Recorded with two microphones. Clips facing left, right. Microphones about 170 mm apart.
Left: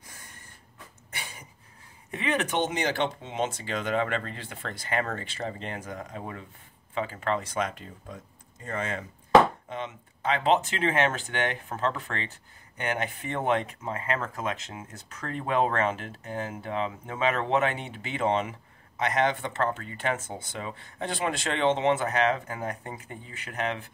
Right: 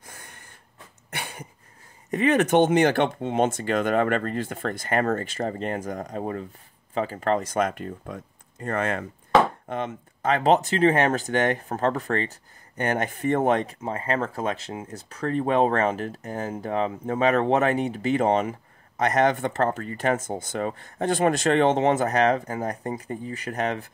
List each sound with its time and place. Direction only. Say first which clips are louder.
0.0 s snort: right 4 dB; 60° right (ahead or behind)
1.1 s a sound: right 7 dB; 60° right (ahead or behind)
2.0 s speech: right 8 dB; 45° right (ahead or behind); by 9.0 s 60° right (ahead or behind)
9.7 s speech: right 6 dB; 50° right (ahead or behind)